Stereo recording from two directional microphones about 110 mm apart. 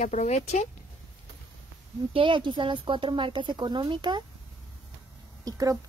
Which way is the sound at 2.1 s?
50° right (ahead or behind).